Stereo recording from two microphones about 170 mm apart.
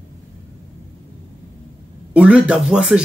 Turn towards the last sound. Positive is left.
turn(degrees=-5)  # may be behind; listen again after turning